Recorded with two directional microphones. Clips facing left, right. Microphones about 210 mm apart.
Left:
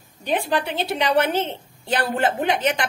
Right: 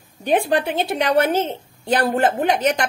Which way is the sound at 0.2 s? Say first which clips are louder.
Right 4 dB; 50° right (ahead or behind).